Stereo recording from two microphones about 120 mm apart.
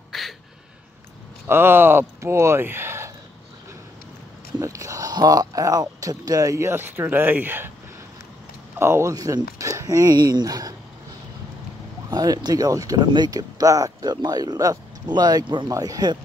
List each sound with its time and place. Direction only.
0.1 s a sound: centre (ahead or behind)
1.5 s speech: 20° right (ahead or behind)
4.6 s speech: 30° right (ahead or behind)
8.7 s speech: 20° right (ahead or behind)
12.1 s speech: 35° right (ahead or behind)